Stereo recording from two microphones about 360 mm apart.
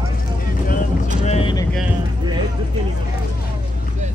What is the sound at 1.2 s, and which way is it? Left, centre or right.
Boat, centre.